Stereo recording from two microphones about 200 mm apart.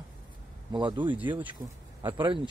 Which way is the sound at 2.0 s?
10° right (ahead or behind).